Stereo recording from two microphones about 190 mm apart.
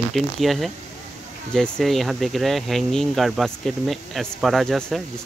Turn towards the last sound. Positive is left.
turn(degrees=0)  # may be behind; listen again after turning